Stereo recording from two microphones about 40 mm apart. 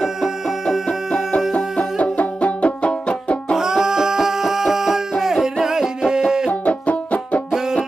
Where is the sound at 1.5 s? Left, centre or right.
Left.